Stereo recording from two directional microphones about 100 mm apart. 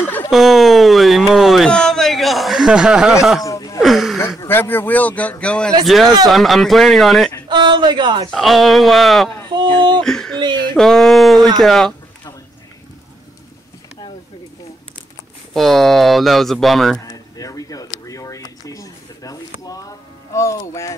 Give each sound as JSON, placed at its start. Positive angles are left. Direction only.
{"t": 0.3, "sound": "a sound", "side_deg": 0}
{"t": 1.7, "sound": "a man's voice", "side_deg": 5}
{"t": 3.4, "sound": "a sound", "side_deg": 35}
{"t": 3.8, "sound": "gasp", "side_deg": 0}
{"t": 4.5, "sound": "a man's voice", "side_deg": 20}
{"t": 5.9, "sound": "speech", "side_deg": 0}
{"t": 7.4, "sound": "a woman's voice", "side_deg": -50}
{"t": 8.3, "sound": "speech", "side_deg": 0}
{"t": 9.5, "sound": "a woman's voice", "side_deg": -50}
{"t": 10.0, "sound": "a sound", "side_deg": 5}
{"t": 11.6, "sound": "speech", "side_deg": 5}
{"t": 15.5, "sound": "speech", "side_deg": 0}
{"t": 17.1, "sound": "a sound", "side_deg": 35}
{"t": 20.3, "sound": "speech", "side_deg": 30}